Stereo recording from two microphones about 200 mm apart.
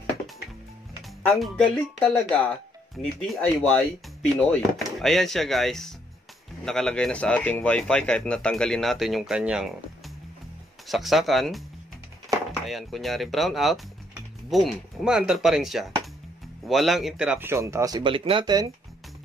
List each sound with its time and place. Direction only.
2.0 s speech: 5° left (ahead or behind)
12.3 s chop: 15° right (ahead or behind)
12.6 s speech: centre (ahead or behind); by 18.7 s 20° right (ahead or behind)